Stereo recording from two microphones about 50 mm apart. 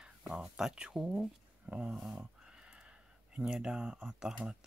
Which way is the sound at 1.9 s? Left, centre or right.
Centre.